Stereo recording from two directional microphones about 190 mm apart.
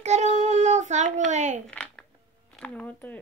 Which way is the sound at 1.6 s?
5° left (ahead or behind).